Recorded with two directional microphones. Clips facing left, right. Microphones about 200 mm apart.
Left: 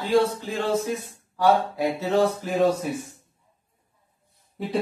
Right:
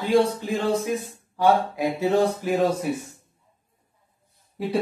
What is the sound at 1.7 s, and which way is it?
Speech, 15° right (ahead or behind).